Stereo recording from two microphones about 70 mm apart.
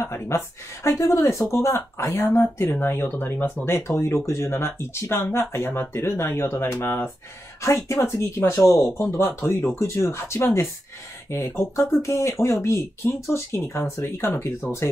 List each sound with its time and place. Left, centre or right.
0.0 s a woman's voice: left
7.6 s speech: left